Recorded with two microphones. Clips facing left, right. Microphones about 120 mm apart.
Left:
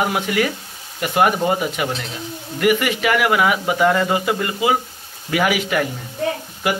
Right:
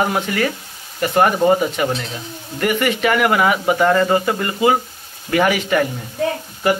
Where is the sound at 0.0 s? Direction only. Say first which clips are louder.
Right 1 dB; 10° left (ahead or behind).